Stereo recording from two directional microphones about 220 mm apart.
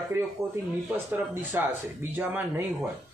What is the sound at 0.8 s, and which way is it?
Speech, 10° right (ahead or behind).